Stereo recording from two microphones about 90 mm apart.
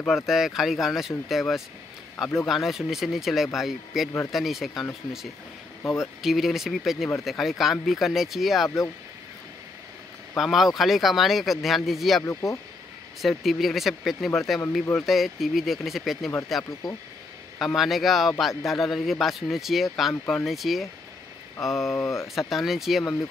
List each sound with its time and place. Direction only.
0.1 s speech: 5° right (ahead or behind)
2.4 s speech: centre (ahead or behind)
5.9 s speech: centre (ahead or behind)
8.6 s speech: 35° left (ahead or behind)
10.3 s speech: centre (ahead or behind)
12.3 s speech: 30° left (ahead or behind)
13.2 s speech: centre (ahead or behind)
21.9 s speech: 35° left (ahead or behind)
22.5 s speech: centre (ahead or behind)